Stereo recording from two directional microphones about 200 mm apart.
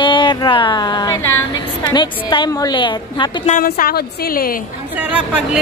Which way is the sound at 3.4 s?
45° left (ahead or behind).